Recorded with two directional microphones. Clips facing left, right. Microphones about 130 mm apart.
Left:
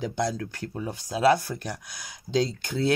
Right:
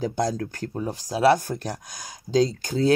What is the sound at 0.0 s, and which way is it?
Speech, 40° right (ahead or behind).